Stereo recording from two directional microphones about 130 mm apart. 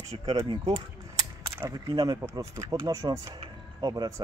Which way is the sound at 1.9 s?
30° right (ahead or behind).